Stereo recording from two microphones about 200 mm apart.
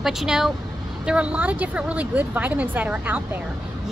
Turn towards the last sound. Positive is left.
turn(degrees=-10)  # may be behind; listen again after turning